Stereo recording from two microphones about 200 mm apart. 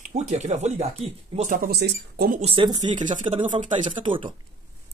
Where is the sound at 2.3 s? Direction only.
30° right (ahead or behind).